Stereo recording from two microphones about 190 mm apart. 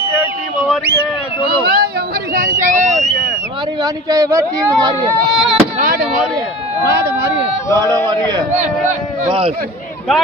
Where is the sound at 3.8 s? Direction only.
20° right (ahead or behind).